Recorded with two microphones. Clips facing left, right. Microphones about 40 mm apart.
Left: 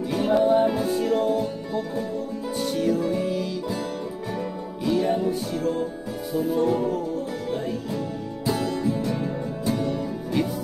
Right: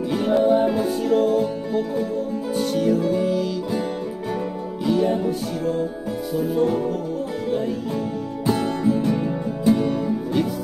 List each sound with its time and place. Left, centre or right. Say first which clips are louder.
0.1 s music: right 1 dB; centre
4.8 s music: right 2 dB; centre
8.5 s music: right 4 dB; right